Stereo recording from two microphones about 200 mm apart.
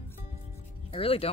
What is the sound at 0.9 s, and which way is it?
Speech, 30° left (ahead or behind).